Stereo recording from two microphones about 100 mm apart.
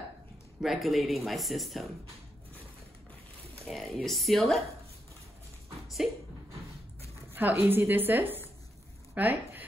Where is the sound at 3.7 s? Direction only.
Centre (ahead or behind).